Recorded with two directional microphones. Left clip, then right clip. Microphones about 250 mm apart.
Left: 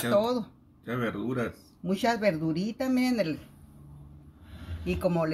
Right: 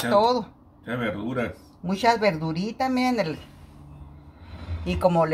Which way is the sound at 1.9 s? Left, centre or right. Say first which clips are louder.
Right 5 dB; centre.